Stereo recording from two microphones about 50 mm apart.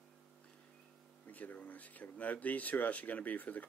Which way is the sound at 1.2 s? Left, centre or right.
Left.